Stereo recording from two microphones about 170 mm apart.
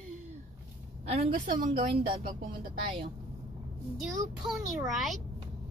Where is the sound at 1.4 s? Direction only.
55° right (ahead or behind).